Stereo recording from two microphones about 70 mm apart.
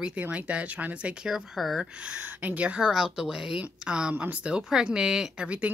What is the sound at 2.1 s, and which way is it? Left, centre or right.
A woman's voice, centre.